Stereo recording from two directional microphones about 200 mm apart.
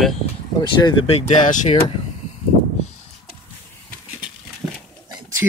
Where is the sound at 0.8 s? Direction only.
30° left (ahead or behind).